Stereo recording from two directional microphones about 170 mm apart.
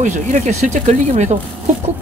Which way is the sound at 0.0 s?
45° right (ahead or behind).